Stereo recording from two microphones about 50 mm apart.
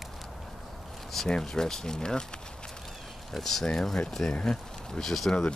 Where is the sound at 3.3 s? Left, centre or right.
Centre.